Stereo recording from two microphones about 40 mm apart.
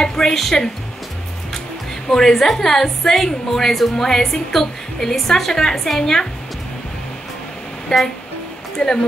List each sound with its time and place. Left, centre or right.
0.0 s a sound: centre
2.0 s a woman's voice: centre
7.9 s speech: centre
8.8 s a woman's voice: centre